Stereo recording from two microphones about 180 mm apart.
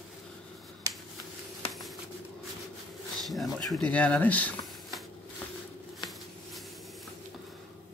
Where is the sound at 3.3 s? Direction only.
Centre (ahead or behind).